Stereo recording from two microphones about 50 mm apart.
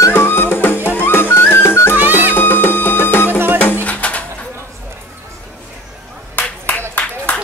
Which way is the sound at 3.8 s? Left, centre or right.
Left.